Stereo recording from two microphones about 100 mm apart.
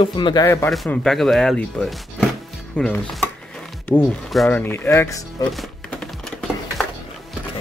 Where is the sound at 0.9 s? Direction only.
5° left (ahead or behind).